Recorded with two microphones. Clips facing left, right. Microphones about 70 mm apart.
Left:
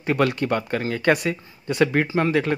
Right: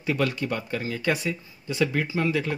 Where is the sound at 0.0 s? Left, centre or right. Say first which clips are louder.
Left 5 dB; left.